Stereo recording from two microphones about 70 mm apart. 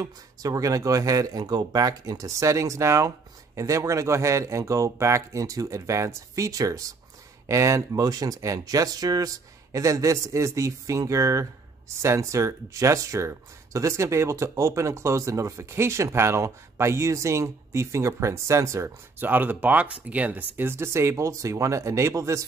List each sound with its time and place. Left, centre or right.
0.4 s speech: right
1.4 s speech: right
19.1 s speech: right